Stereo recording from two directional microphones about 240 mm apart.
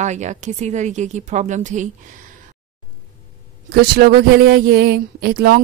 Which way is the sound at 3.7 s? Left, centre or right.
Right.